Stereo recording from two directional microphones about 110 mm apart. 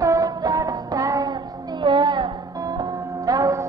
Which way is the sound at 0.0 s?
30° right (ahead or behind).